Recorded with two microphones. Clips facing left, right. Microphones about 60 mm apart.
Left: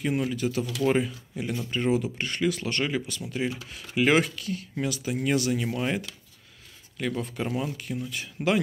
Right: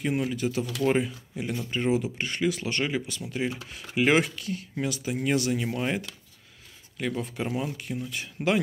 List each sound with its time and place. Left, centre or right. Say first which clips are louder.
0.0 s speech: even; right